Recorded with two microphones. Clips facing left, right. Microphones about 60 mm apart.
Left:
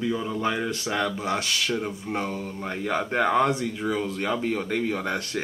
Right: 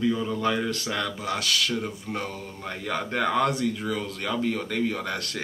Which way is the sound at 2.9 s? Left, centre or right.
Left.